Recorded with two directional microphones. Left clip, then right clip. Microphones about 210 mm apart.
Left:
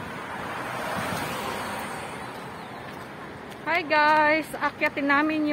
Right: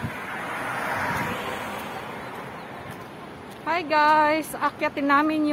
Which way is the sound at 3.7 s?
10° right (ahead or behind).